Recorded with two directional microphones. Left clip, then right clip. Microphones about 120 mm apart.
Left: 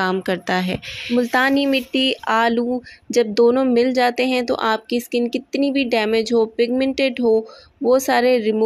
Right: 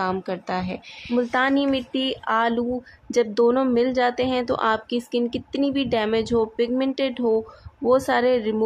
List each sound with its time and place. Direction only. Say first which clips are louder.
0.0 s speech: left 5 dB; 40° left (ahead or behind); by 8.6 s 25° left (ahead or behind)